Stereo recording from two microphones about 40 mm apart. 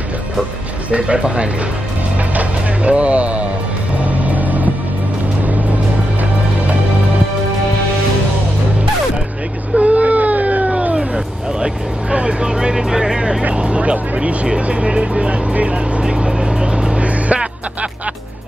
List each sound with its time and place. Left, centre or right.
1.0 s speech: right
2.3 s music: right
9.8 s baby cry: right
11.6 s vehicle: right
13.6 s speech: right
16.3 s music: centre